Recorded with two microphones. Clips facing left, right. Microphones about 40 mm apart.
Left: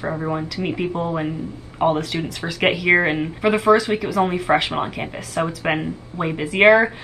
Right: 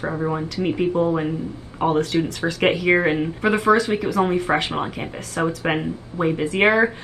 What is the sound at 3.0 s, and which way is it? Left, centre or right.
Speech, centre.